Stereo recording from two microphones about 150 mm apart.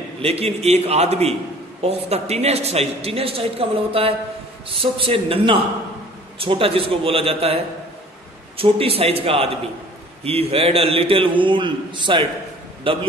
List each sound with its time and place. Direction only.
0.2 s a man's voice: 40° right (ahead or behind)